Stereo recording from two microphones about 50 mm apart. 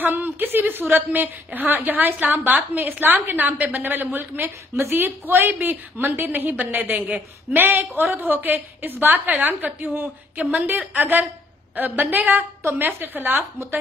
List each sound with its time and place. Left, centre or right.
0.0 s a woman's voice: right